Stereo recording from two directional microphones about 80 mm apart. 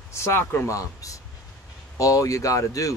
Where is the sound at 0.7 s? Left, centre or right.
Left.